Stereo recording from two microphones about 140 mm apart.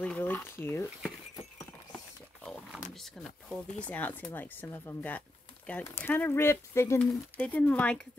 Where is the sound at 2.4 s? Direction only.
Centre (ahead or behind); by 7.0 s 20° left (ahead or behind).